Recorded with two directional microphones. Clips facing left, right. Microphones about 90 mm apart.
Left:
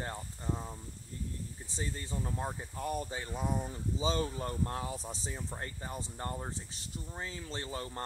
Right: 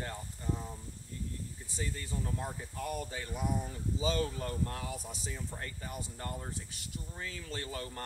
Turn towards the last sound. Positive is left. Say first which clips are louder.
# left 1 dB
turn(degrees=25)  # may be behind; listen again after turning